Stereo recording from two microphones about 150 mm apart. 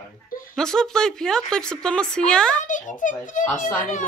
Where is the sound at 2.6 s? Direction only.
60° left (ahead or behind).